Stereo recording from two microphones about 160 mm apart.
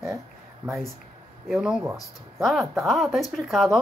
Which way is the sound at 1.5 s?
5° right (ahead or behind).